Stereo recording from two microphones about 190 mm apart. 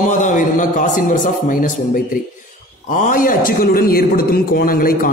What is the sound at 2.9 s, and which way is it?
Speech, 45° left (ahead or behind).